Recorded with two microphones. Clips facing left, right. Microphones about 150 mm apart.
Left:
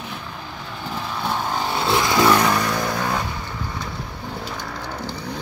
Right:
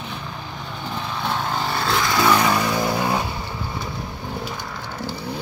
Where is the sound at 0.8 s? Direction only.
5° left (ahead or behind).